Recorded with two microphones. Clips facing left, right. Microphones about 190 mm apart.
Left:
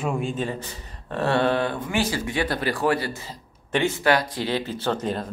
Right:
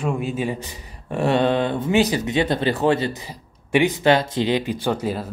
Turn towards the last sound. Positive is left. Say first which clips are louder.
# right 2 dB
turn(degrees=-5)  # may be behind; listen again after turning